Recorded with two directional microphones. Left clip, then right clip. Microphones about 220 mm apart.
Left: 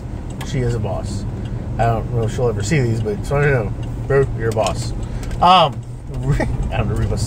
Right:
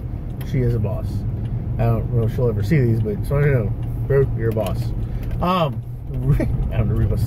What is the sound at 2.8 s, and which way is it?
Speech, 10° right (ahead or behind).